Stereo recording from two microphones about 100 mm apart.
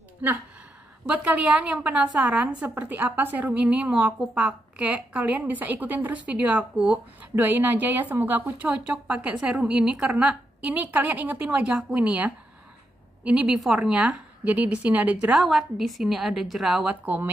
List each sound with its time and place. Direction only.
1.0 s a woman's voice: 10° right (ahead or behind)
15.3 s a woman's voice: centre (ahead or behind)
16.9 s a woman's voice: 15° right (ahead or behind)